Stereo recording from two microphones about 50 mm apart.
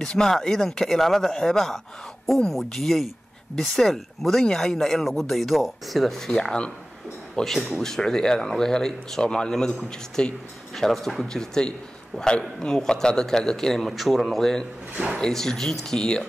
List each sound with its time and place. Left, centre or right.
0.0 s speech: centre
6.3 s speech: centre
7.3 s speech: centre
11.3 s speech: centre